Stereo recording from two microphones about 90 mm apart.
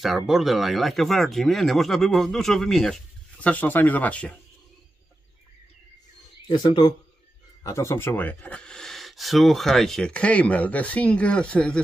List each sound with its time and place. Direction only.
0.0 s speech: centre (ahead or behind)
3.3 s speech: 15° left (ahead or behind)
6.5 s speech: 60° left (ahead or behind)
7.6 s speech: 35° left (ahead or behind); by 11.8 s 10° left (ahead or behind)